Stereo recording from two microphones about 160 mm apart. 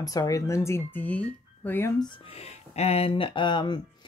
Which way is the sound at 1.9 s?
30° left (ahead or behind).